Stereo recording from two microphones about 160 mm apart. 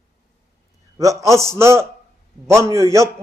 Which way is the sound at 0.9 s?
20° right (ahead or behind).